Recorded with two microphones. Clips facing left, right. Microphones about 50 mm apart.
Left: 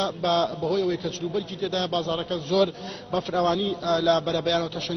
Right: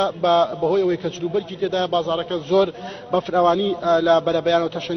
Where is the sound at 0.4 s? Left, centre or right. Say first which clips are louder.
Right 6 dB; right.